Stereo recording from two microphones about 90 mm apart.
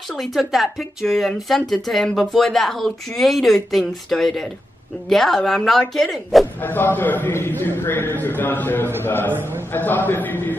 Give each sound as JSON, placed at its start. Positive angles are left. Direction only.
{"t": 0.1, "sound": "speech", "side_deg": 0}
{"t": 6.6, "sound": "a man's voice", "side_deg": 20}
{"t": 9.3, "sound": "a man's voice", "side_deg": -25}
{"t": 9.7, "sound": "a man's voice", "side_deg": 20}